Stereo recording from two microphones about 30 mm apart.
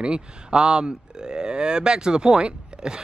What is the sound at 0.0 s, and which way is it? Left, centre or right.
Speech, right.